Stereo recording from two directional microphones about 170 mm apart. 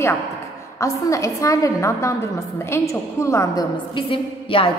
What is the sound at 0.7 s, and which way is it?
A woman's voice, 20° left (ahead or behind).